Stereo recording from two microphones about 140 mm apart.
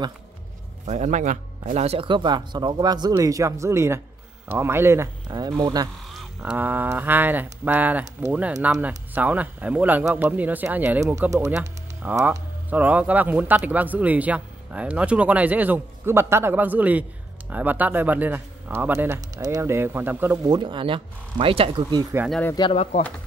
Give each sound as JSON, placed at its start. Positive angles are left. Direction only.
{"t": 0.8, "sound": "speech", "side_deg": -60}
{"t": 5.5, "sound": "speech", "side_deg": -30}
{"t": 6.0, "sound": "speech", "side_deg": -5}
{"t": 11.6, "sound": "a sound", "side_deg": -10}
{"t": 12.6, "sound": "speech", "side_deg": -10}
{"t": 20.4, "sound": "speech", "side_deg": -35}
{"t": 22.6, "sound": "speech", "side_deg": 45}